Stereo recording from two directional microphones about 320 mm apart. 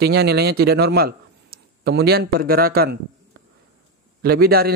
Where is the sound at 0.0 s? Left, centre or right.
Right.